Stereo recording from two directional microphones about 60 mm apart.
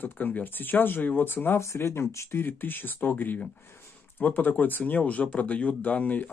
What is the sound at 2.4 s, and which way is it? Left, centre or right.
Speech, left.